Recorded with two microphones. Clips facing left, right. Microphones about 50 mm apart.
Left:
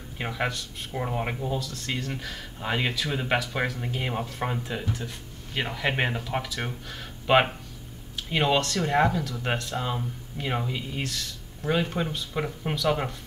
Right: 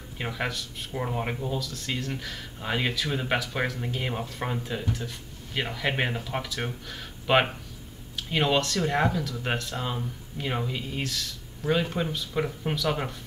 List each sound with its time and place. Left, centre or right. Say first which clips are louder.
0.2 s speech: left 2 dB; centre